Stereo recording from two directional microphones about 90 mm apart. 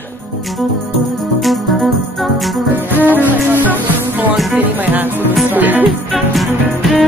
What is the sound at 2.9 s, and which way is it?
Music, 20° right (ahead or behind).